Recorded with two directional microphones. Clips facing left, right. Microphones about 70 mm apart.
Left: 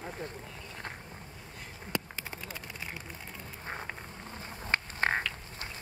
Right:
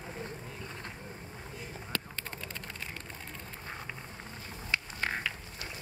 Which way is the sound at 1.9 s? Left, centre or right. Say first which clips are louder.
Left 4 dB; centre.